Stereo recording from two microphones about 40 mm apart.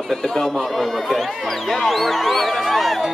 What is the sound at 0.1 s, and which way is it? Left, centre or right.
Speech, centre.